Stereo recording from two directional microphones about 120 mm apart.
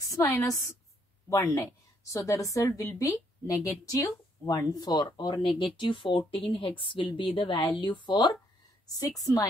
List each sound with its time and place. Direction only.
0.1 s a woman's voice: 30° left (ahead or behind)